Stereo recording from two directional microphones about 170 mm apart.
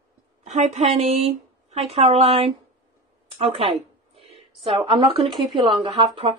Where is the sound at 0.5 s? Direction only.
40° right (ahead or behind).